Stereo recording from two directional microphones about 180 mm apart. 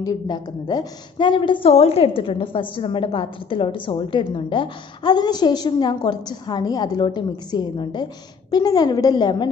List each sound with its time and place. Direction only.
0.0 s a woman's voice: 20° left (ahead or behind)